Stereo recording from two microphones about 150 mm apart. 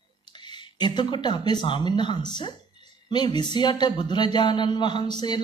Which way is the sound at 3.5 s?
30° left (ahead or behind).